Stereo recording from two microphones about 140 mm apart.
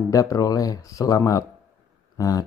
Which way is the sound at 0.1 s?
25° left (ahead or behind).